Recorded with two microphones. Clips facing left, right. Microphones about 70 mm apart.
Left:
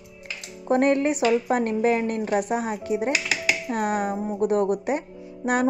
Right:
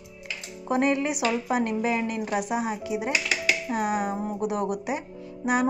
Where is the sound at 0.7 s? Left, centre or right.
Left.